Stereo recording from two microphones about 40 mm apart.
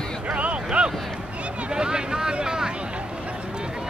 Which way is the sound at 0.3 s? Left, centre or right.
Right.